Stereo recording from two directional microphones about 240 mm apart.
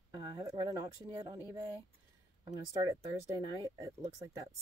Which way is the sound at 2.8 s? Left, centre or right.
Centre.